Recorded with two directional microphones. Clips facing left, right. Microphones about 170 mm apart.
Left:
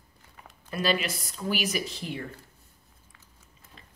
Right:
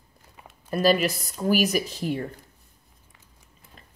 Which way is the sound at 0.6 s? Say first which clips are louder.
Right 7 dB; 45° right (ahead or behind).